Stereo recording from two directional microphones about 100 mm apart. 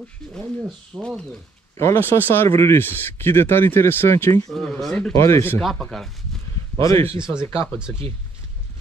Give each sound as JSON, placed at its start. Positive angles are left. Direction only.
{"t": 0.3, "sound": "speech", "side_deg": 5}
{"t": 1.8, "sound": "speech", "side_deg": 25}
{"t": 4.5, "sound": "speech", "side_deg": 5}
{"t": 5.1, "sound": "speech", "side_deg": 30}
{"t": 5.9, "sound": "speech", "side_deg": 5}
{"t": 6.8, "sound": "speech", "side_deg": 30}